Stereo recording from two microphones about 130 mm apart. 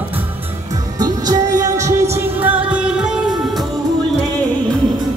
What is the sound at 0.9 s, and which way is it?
Music, 30° right (ahead or behind).